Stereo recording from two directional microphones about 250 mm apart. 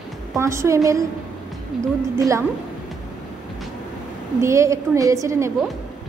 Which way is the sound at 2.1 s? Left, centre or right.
Centre.